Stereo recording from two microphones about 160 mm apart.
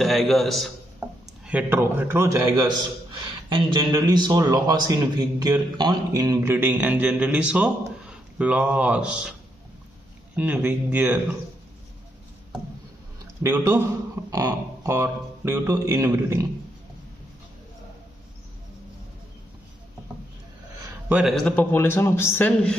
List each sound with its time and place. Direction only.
0.0 s a man's voice: centre (ahead or behind)
1.0 s a sound: 15° right (ahead or behind)
1.5 s a man's voice: 10° right (ahead or behind)
10.3 s a man's voice: 10° right (ahead or behind)
13.4 s a man's voice: 15° right (ahead or behind)
21.1 s a man's voice: 5° right (ahead or behind)